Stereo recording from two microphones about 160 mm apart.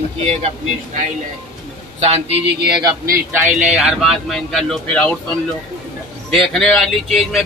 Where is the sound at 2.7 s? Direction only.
25° right (ahead or behind).